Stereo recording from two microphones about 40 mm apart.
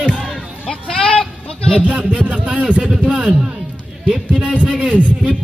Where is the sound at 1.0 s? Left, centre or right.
Centre.